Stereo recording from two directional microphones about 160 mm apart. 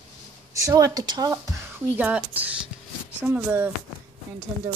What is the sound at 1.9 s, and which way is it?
Speech, 10° right (ahead or behind).